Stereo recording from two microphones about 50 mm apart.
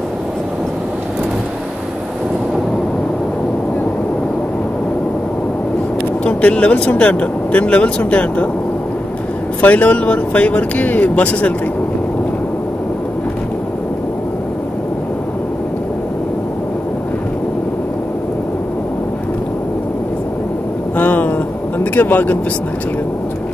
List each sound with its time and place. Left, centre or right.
6.2 s speech: left
9.6 s speech: left
20.9 s vehicle: left